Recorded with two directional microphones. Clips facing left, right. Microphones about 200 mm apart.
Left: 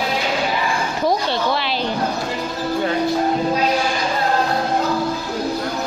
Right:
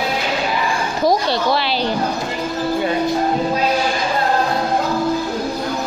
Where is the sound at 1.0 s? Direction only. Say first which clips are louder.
Right 3 dB; 35° right (ahead or behind).